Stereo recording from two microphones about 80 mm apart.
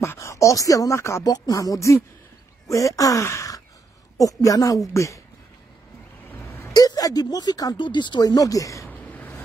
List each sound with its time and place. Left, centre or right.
0.0 s speech: left
1.2 s speech: left
6.2 s a sound: left
6.7 s speech: left
7.7 s speech: left
8.8 s a sound: centre